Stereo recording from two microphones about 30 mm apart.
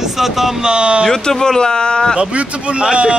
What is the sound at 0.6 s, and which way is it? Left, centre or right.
Speech, right.